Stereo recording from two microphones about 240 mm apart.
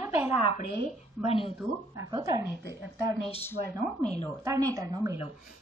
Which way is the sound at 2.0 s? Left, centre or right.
Centre.